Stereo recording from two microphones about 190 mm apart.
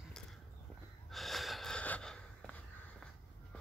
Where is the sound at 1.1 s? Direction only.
Centre (ahead or behind).